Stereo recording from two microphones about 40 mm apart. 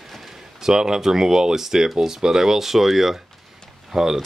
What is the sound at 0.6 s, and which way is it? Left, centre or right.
Speech, centre.